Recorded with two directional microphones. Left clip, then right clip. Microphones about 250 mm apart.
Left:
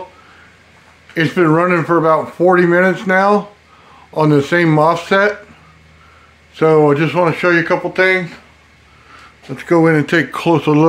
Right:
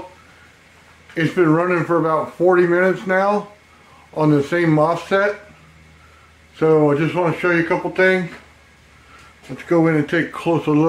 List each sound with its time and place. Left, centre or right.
1.1 s speech: left
6.5 s speech: left
9.6 s speech: left